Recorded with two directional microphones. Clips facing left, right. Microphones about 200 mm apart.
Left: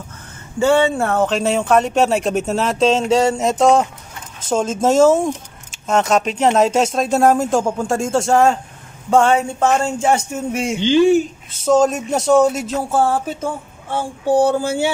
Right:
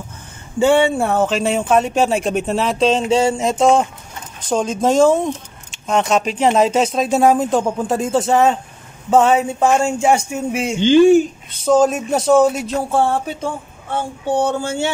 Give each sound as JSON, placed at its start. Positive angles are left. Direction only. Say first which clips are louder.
{"t": 0.6, "sound": "a man's voice", "louder": "right 1 dB", "side_deg": -15}
{"t": 10.8, "sound": "speech", "louder": "right 3 dB", "side_deg": -50}
{"t": 11.5, "sound": "speech", "louder": "even", "side_deg": 0}